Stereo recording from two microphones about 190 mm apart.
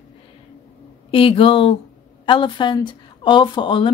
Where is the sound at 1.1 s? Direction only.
30° left (ahead or behind).